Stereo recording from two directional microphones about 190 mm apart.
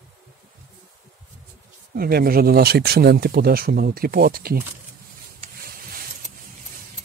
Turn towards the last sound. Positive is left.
turn(degrees=-50)  # may be behind; listen again after turning